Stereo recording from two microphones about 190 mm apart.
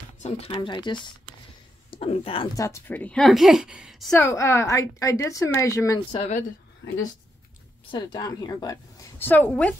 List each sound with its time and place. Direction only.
0.2 s speech: 30° left (ahead or behind)
2.5 s a woman's voice: 15° left (ahead or behind); by 4.1 s 5° right (ahead or behind)
4.1 s a woman's voice: 15° left (ahead or behind)
7.9 s speech: 20° left (ahead or behind)
9.2 s a woman's voice: 10° left (ahead or behind)